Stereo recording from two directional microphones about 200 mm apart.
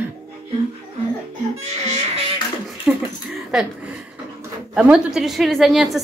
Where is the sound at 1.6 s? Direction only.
35° right (ahead or behind).